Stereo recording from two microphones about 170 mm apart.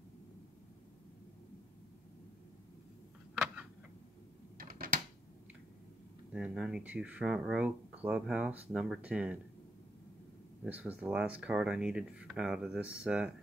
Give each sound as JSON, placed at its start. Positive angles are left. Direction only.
{"t": 4.6, "sound": "typewriter", "side_deg": -60}
{"t": 6.3, "sound": "speech", "side_deg": -5}
{"t": 10.6, "sound": "speech", "side_deg": -10}